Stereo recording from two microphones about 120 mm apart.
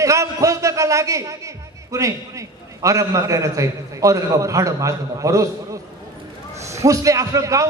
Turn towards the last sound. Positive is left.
turn(degrees=-25)  # may be behind; listen again after turning